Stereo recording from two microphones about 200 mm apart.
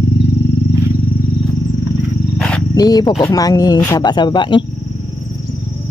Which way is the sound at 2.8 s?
20° left (ahead or behind).